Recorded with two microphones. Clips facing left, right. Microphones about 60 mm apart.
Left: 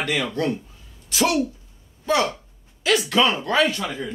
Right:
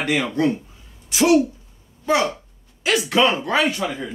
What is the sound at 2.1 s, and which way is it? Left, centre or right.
A man's voice, centre.